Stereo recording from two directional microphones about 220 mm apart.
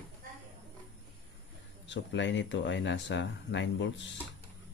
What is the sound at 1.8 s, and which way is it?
Speech, 55° left (ahead or behind).